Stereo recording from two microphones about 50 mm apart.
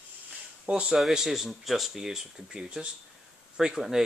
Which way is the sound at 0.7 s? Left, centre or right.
Centre.